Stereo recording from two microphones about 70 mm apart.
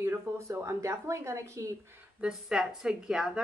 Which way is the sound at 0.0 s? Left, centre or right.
Right.